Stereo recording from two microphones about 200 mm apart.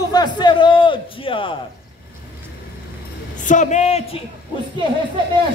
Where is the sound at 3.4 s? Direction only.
40° left (ahead or behind).